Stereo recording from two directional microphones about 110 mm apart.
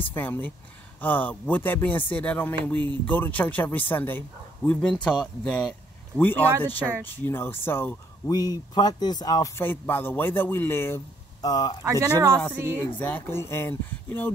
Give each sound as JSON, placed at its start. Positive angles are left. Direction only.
{"t": 0.1, "sound": "speech", "side_deg": 15}
{"t": 8.3, "sound": "speech", "side_deg": 35}
{"t": 9.6, "sound": "speech", "side_deg": 20}
{"t": 11.4, "sound": "speech", "side_deg": 35}
{"t": 11.8, "sound": "speech", "side_deg": -25}
{"t": 13.0, "sound": "speech", "side_deg": 20}